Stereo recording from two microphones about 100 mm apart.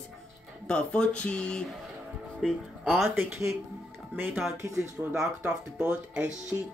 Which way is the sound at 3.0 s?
25° right (ahead or behind).